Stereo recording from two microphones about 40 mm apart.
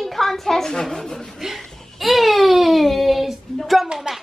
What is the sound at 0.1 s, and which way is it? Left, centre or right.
Speech, centre.